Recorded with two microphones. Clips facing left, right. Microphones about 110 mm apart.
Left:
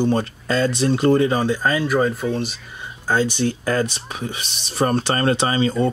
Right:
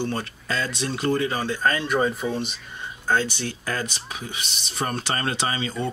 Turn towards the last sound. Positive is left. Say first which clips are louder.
# left 8 dB
turn(degrees=35)  # may be behind; listen again after turning